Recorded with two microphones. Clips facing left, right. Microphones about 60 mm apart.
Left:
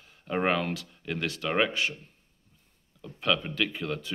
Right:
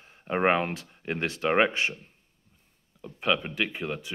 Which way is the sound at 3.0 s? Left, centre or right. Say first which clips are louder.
Right 1 dB; right.